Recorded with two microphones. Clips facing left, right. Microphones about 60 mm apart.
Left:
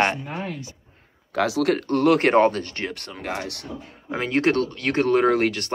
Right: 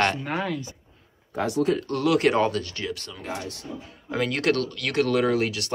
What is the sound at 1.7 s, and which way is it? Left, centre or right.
Speech, left.